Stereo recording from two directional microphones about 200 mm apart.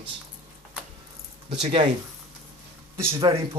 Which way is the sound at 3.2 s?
30° right (ahead or behind).